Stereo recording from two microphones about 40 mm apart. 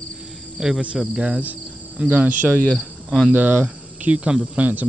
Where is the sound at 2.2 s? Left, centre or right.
Right.